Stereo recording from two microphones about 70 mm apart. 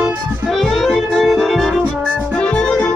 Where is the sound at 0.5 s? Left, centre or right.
Centre.